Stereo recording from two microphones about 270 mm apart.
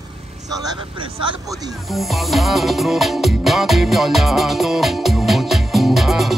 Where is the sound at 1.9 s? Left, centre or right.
Centre.